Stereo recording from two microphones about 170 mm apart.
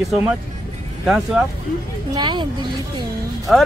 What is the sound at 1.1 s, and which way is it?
Speech, 5° right (ahead or behind).